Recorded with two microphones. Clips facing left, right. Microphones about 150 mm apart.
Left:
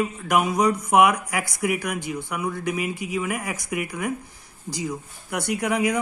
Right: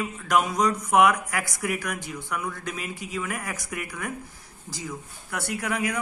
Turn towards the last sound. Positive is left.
turn(degrees=20)  # may be behind; listen again after turning